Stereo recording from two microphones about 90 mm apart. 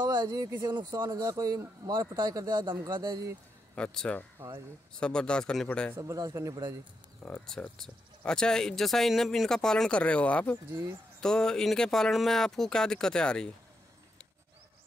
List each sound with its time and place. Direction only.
0.0 s speech: 55° right (ahead or behind); by 1.7 s 35° right (ahead or behind)
1.9 s speech: 60° right (ahead or behind)
3.7 s speech: 10° left (ahead or behind)
5.7 s speech: 15° left (ahead or behind)
5.9 s speech: 45° right (ahead or behind)
7.4 s speech: 5° left (ahead or behind)